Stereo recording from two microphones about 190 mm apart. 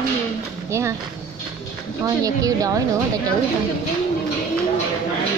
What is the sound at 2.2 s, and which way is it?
Speech, 20° right (ahead or behind).